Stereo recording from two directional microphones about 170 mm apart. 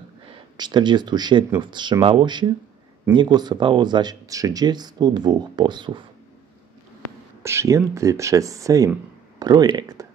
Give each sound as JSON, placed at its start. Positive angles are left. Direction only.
{"t": 0.3, "sound": "speech", "side_deg": -25}
{"t": 7.4, "sound": "speech", "side_deg": -15}